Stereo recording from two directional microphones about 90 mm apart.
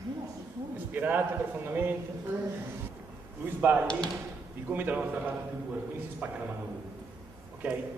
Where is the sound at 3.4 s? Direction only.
20° right (ahead or behind).